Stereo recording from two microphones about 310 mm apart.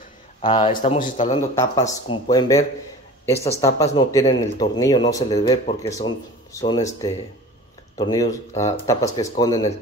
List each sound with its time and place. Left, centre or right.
0.4 s speech: centre
1.5 s speech: centre